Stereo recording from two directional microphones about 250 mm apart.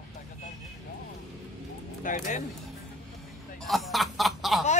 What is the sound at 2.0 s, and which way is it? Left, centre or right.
Speech, left.